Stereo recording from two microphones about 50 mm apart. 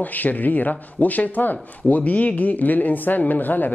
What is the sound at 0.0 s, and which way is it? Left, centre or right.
Speech, left.